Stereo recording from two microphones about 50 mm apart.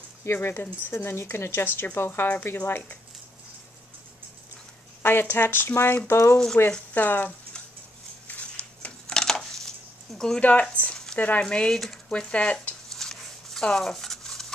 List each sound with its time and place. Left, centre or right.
0.2 s speech: left
5.0 s speech: left
6.0 s speech: left
6.3 s speech: centre
6.9 s speech: left
8.3 s a sound: left
9.0 s a sound: centre
10.1 s speech: centre
10.4 s speech: left
11.4 s speech: centre
11.7 s speech: centre
12.1 s speech: left
12.9 s a sound: centre